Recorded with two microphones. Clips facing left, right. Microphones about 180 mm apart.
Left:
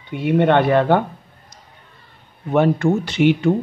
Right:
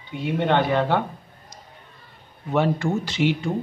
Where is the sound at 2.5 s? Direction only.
60° left (ahead or behind).